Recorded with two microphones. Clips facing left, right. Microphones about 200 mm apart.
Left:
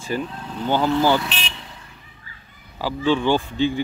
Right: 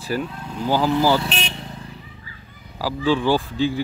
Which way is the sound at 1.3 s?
50° right (ahead or behind).